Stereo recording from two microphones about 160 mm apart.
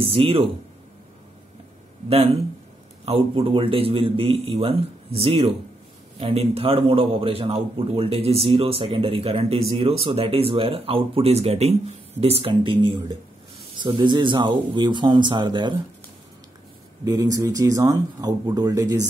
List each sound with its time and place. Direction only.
0.0 s a man's voice: 35° right (ahead or behind)
2.0 s a man's voice: 40° right (ahead or behind)
17.0 s speech: 20° right (ahead or behind)